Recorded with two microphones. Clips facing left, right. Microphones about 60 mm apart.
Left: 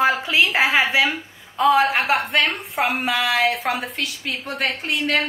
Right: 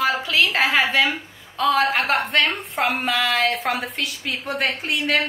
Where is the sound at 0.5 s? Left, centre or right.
Centre.